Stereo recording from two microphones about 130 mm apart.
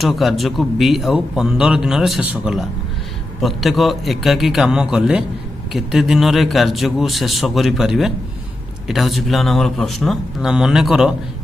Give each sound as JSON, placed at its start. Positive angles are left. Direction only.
{"t": 0.0, "sound": "a man's voice", "side_deg": 0}